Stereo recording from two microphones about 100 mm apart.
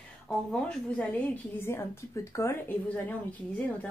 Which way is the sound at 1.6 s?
25° left (ahead or behind).